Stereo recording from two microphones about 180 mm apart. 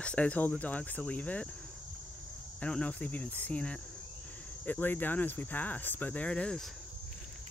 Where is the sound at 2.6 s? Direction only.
5° left (ahead or behind).